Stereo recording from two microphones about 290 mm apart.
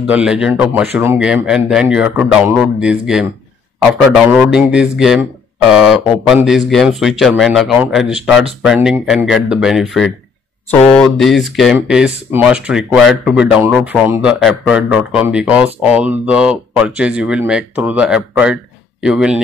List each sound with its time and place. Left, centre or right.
0.0 s speech: centre